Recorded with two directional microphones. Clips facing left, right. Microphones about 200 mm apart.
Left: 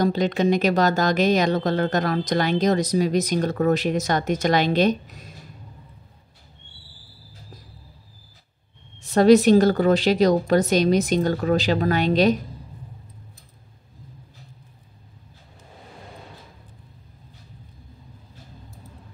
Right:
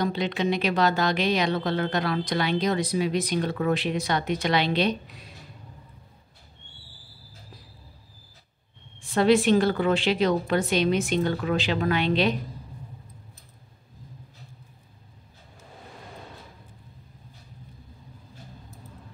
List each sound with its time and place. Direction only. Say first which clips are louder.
0.0 s speech: left 5 dB; 40° left (ahead or behind)
9.0 s a woman's voice: left 6 dB; 40° left (ahead or behind)